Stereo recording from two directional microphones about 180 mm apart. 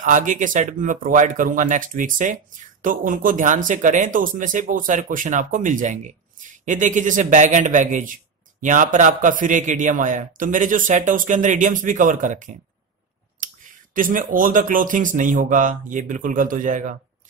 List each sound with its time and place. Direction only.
0.0 s speech: 45° right (ahead or behind)
13.9 s speech: 50° right (ahead or behind)